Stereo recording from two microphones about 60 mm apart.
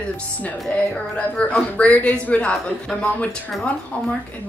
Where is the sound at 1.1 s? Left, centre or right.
Centre.